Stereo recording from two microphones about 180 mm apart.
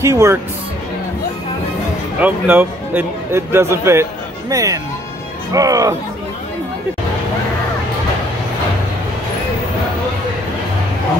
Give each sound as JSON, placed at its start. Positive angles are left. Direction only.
{"t": 0.0, "sound": "a man's voice", "side_deg": -15}
{"t": 2.1, "sound": "a man's voice", "side_deg": -10}